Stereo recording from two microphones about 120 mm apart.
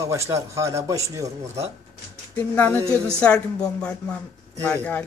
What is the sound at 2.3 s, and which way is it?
Speech, 15° left (ahead or behind).